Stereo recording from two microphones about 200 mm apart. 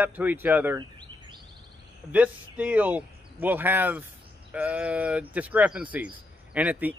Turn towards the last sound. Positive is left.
turn(degrees=-5)  # may be behind; listen again after turning